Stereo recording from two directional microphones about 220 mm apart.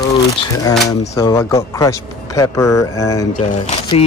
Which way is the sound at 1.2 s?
15° left (ahead or behind).